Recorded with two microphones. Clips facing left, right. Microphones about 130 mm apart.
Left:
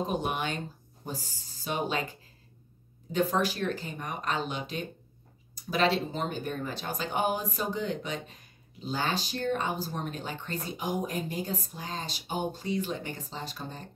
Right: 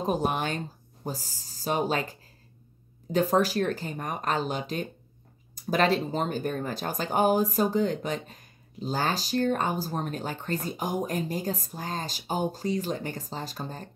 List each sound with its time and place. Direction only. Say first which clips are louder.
0.0 s speech: right 3 dB; 40° right (ahead or behind)